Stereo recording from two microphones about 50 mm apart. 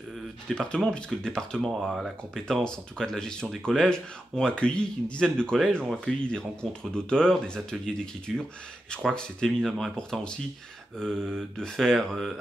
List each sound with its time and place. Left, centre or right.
0.5 s speech: centre
1.7 s speech: centre
2.3 s speech: centre
11.0 s speech: centre